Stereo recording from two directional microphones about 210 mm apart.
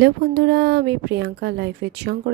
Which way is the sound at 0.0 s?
50° right (ahead or behind).